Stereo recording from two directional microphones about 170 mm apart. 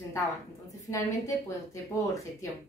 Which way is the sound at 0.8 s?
20° left (ahead or behind).